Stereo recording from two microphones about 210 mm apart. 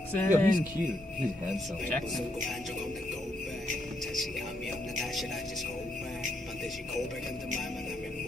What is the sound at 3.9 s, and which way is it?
Music, centre (ahead or behind).